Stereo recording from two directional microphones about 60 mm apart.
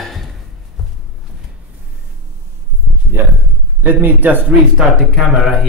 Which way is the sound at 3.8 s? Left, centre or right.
Right.